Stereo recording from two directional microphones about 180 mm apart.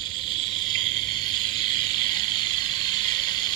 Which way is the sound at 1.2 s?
25° left (ahead or behind).